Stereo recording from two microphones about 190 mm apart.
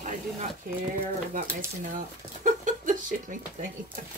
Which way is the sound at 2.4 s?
40° right (ahead or behind).